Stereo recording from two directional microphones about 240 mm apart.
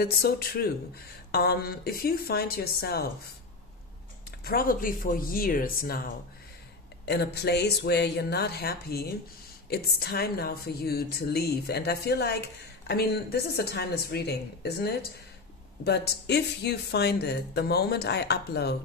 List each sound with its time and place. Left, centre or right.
0.0 s speech: left
4.5 s speech: left